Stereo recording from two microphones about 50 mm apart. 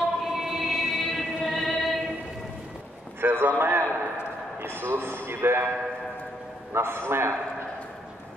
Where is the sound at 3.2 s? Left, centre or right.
Right.